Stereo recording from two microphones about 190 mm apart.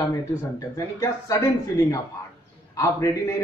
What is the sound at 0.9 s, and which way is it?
A man's voice, 20° left (ahead or behind).